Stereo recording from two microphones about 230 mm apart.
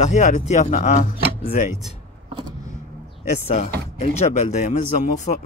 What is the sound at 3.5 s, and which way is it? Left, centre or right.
Speech, left.